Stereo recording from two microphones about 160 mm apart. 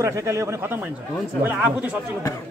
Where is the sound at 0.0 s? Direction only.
20° right (ahead or behind).